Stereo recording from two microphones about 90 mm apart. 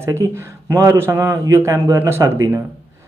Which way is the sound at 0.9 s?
25° right (ahead or behind).